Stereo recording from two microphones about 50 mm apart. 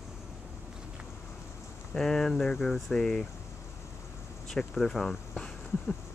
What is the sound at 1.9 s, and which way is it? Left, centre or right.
Speech, centre.